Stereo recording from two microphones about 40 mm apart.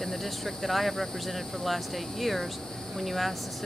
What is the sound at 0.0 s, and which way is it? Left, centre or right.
Speech, centre.